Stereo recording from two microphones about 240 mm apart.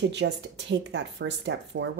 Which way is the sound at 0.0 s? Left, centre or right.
Right.